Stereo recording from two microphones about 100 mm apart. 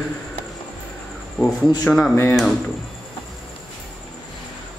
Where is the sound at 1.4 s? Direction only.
Centre (ahead or behind).